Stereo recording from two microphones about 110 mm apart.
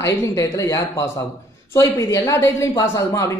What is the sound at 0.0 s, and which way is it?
Speech, 25° left (ahead or behind).